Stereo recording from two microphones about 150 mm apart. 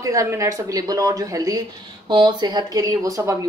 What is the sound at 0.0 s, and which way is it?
Speech, 20° right (ahead or behind).